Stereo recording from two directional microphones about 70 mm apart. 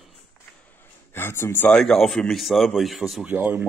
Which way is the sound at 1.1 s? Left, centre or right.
Left.